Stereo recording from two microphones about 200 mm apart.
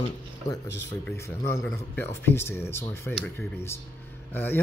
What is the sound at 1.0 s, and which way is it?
Speech, 10° left (ahead or behind).